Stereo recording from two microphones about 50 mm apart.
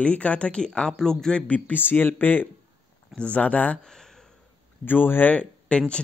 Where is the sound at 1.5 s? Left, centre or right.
Left.